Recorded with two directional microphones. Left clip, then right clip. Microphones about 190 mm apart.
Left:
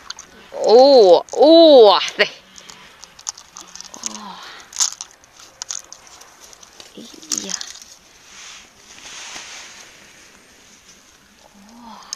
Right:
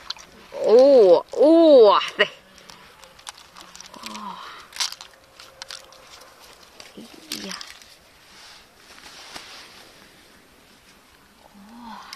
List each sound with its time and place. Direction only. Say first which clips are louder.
0.6 s speech: left 4 dB; 5° left (ahead or behind)
4.1 s a sound: left 1 dB; 15° left (ahead or behind)
4.7 s biting: left 5 dB; 10° right (ahead or behind)